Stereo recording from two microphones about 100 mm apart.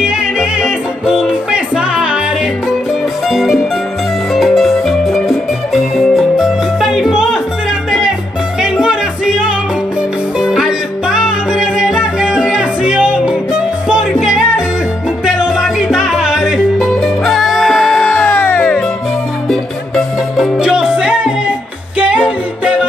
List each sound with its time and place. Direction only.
0.0 s music: 10° right (ahead or behind)
3.3 s music: centre (ahead or behind)
8.5 s music: 5° right (ahead or behind); by 18.9 s 10° left (ahead or behind)
19.5 s music: centre (ahead or behind)